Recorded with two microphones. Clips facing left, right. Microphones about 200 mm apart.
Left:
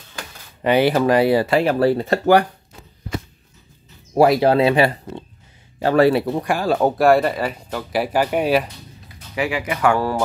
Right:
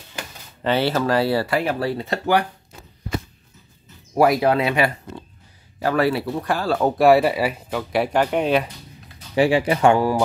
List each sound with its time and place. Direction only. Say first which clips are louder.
0.7 s speech: left 4 dB; 15° left (ahead or behind)
1.7 s speech: left 6 dB; 50° left (ahead or behind)
4.1 s speech: left 3 dB; 25° left (ahead or behind)
6.4 s speech: left 2 dB; 15° left (ahead or behind)
7.0 s speech: right 3 dB; centre (ahead or behind)
9.3 s speech: right 6 dB; 30° right (ahead or behind)
9.9 s speech: right 2 dB; 15° right (ahead or behind)